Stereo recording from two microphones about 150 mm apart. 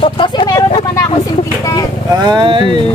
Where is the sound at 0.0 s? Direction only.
35° left (ahead or behind).